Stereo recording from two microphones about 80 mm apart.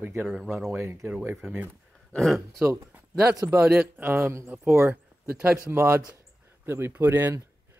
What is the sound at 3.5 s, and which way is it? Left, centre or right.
Speech, centre.